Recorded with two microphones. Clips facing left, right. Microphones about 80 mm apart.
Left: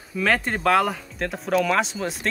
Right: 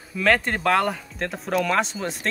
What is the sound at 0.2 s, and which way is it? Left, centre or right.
Speech, centre.